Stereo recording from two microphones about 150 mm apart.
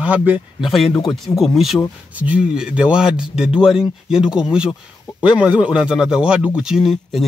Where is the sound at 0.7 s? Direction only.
Centre (ahead or behind).